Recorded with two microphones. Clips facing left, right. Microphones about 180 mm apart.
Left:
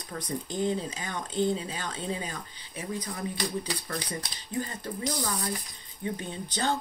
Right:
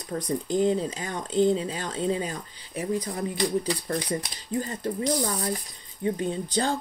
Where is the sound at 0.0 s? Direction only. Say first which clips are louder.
Right 6 dB; 35° right (ahead or behind).